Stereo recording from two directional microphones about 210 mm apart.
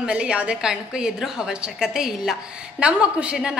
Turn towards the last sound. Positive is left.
turn(degrees=-5)  # may be behind; listen again after turning